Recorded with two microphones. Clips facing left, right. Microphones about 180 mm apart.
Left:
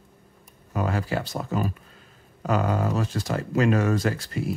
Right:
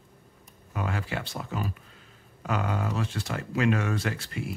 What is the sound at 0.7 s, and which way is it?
Speech, 40° left (ahead or behind).